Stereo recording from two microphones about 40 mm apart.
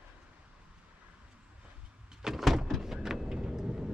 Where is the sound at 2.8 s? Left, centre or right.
Centre.